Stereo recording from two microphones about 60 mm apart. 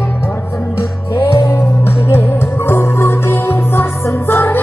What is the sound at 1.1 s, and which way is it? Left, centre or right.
Music, left.